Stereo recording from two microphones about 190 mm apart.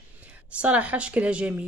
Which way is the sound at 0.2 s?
5° right (ahead or behind).